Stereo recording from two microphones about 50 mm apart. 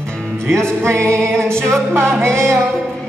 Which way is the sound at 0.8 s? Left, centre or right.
Right.